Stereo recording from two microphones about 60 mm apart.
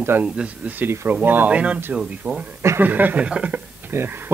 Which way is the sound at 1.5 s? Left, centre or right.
Right.